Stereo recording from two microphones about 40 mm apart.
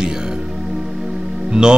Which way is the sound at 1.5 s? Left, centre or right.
Right.